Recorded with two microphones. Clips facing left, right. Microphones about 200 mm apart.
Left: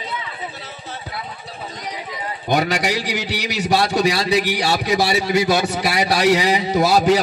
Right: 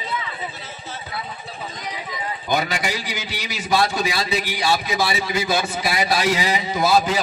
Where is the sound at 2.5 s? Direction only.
70° left (ahead or behind).